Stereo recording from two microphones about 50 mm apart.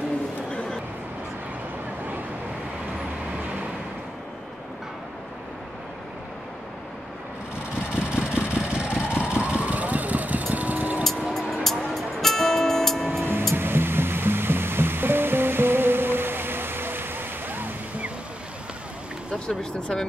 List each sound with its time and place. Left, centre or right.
7.9 s vehicle: right
11.5 s music: centre
13.2 s music: right
19.4 s speech: centre